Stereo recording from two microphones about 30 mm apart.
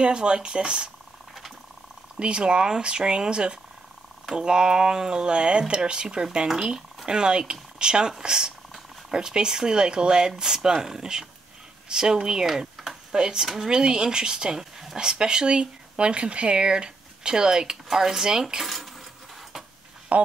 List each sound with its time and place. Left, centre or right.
0.0 s speech: right
2.1 s speech: right
7.1 s speech: right
17.8 s speech: centre
18.6 s speech: centre
20.1 s speech: right